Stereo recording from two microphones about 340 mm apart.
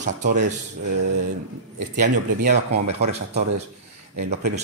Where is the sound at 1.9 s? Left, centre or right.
Right.